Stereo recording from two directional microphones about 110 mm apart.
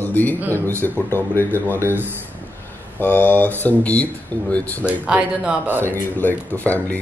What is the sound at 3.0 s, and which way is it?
Speech, 20° left (ahead or behind).